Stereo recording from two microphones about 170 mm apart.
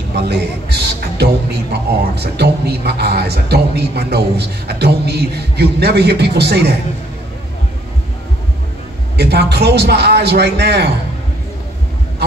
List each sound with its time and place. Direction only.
0.1 s a man's voice: 75° right (ahead or behind)
9.1 s a man's voice: 75° right (ahead or behind)